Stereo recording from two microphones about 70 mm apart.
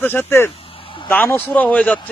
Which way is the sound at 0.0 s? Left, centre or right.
Left.